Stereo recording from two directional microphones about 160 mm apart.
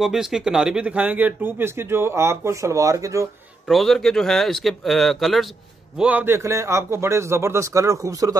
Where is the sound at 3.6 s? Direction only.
Centre (ahead or behind).